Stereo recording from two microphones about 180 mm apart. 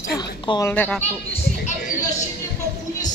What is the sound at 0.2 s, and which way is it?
Speech, 20° left (ahead or behind).